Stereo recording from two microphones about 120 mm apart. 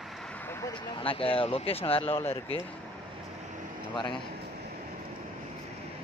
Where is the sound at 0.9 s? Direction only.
50° left (ahead or behind).